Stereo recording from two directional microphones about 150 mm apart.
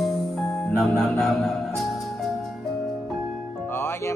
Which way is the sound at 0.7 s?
5° left (ahead or behind).